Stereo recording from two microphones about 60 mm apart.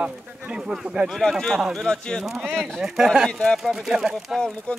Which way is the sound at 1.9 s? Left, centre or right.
Centre.